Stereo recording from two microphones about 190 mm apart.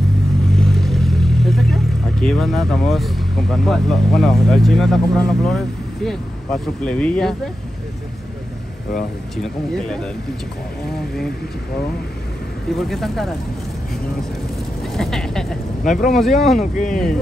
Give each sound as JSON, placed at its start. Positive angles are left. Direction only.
{"t": 0.6, "sound": "speech", "side_deg": 0}
{"t": 9.4, "sound": "speech", "side_deg": 5}
{"t": 12.7, "sound": "speech", "side_deg": 0}
{"t": 15.0, "sound": "a sound", "side_deg": 5}
{"t": 15.8, "sound": "speech", "side_deg": 45}
{"t": 16.1, "sound": "speech", "side_deg": 0}
{"t": 16.7, "sound": "speech", "side_deg": 40}